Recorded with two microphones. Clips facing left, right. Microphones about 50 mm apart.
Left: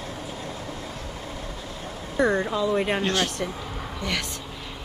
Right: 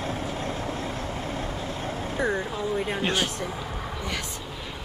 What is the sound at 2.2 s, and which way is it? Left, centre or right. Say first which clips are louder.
Speech: left 5 dB; left.